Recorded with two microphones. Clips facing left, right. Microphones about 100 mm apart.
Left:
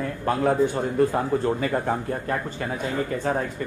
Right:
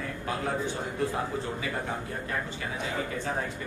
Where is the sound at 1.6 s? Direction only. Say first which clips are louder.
Left 8 dB; 50° left (ahead or behind).